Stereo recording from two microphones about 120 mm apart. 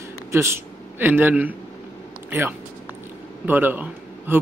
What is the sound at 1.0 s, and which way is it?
A man's voice, 15° right (ahead or behind).